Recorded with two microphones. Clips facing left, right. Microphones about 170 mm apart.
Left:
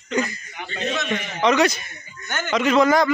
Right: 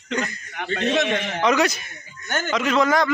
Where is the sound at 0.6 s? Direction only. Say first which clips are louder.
Right 5 dB; 75° right (ahead or behind).